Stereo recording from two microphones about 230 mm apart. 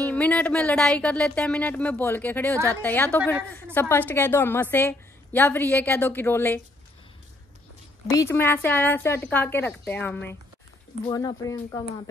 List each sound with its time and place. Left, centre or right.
0.0 s a woman's voice: centre
8.1 s a woman's voice: centre